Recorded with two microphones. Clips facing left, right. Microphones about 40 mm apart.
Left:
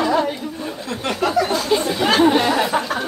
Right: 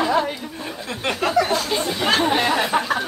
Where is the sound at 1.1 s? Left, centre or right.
Centre.